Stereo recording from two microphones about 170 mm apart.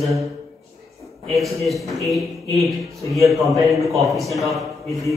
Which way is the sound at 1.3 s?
Centre (ahead or behind).